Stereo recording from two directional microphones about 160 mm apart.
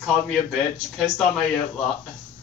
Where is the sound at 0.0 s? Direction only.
Centre (ahead or behind).